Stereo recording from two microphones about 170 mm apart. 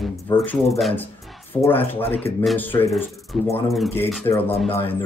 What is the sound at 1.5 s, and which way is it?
Speech, 10° left (ahead or behind).